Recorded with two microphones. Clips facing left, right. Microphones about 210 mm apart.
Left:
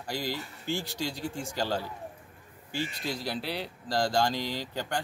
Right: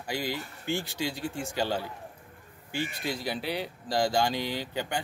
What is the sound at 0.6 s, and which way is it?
Speech, 55° right (ahead or behind).